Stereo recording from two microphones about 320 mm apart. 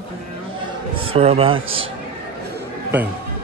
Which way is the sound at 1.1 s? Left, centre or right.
Centre.